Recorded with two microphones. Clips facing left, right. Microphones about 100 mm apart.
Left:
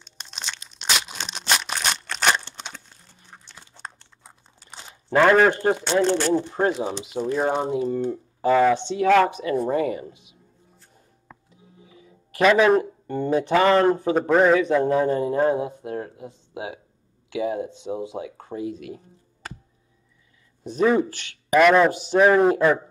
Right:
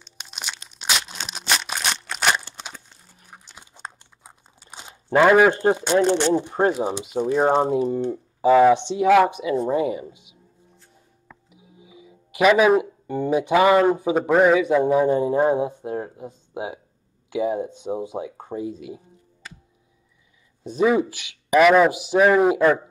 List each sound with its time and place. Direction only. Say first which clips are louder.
0.2 s crunch: right 1 dB; 10° right (ahead or behind)
0.7 s crumpling: even; 5° right (ahead or behind)
2.0 s crunch: even; 10° right (ahead or behind)
5.5 s speech: right 2 dB; 20° right (ahead or behind)
6.7 s speech: right 2 dB; 10° right (ahead or behind)
7.5 s speech: right 4 dB; 25° right (ahead or behind)
8.1 s speech: right 5 dB; 10° right (ahead or behind)
11.5 s speech: right 2 dB; 15° right (ahead or behind)
20.7 s speech: right 1 dB; 10° right (ahead or behind)